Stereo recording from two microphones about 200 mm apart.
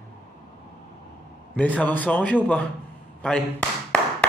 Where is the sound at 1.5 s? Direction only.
10° left (ahead or behind).